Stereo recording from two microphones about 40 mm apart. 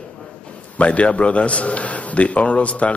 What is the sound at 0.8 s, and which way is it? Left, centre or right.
A man's voice, left.